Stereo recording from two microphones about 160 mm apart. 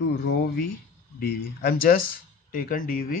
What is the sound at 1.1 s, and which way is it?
Speech, 65° left (ahead or behind).